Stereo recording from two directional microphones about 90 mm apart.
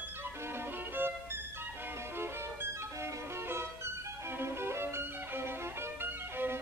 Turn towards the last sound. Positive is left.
turn(degrees=-25)  # may be behind; listen again after turning